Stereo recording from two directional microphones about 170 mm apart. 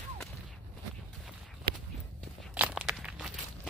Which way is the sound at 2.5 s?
10° right (ahead or behind).